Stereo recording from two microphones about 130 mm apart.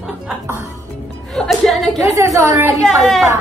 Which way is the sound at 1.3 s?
5° left (ahead or behind).